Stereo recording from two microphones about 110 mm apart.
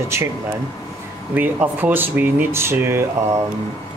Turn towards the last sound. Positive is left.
turn(degrees=-20)  # may be behind; listen again after turning